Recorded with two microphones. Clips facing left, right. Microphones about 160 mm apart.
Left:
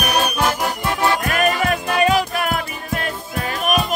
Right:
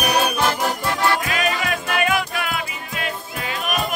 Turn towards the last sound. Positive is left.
turn(degrees=50)  # may be behind; listen again after turning